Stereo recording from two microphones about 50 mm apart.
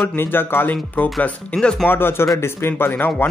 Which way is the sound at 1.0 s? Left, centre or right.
Left.